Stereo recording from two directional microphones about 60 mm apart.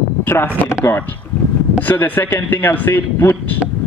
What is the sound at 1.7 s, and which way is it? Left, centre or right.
Speech, left.